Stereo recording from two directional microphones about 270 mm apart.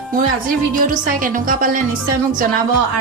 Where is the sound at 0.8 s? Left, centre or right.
Right.